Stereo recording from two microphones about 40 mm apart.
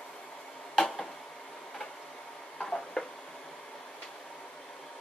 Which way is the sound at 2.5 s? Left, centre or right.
Left.